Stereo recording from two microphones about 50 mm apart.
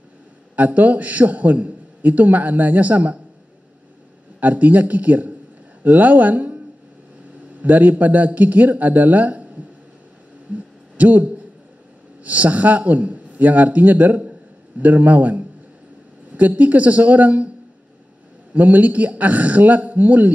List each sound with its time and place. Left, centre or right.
0.6 s a man's voice: right
4.4 s a man's voice: right
7.6 s a man's voice: right
11.0 s a man's voice: right
18.5 s a man's voice: right